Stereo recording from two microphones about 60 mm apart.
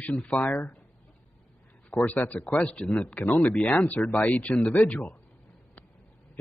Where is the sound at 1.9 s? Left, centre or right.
Left.